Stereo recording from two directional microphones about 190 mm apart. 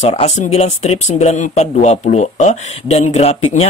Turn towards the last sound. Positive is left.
turn(degrees=35)  # may be behind; listen again after turning